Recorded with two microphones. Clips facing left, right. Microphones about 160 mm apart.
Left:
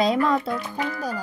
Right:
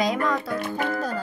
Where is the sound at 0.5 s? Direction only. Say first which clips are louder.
Right 2 dB; 55° right (ahead or behind).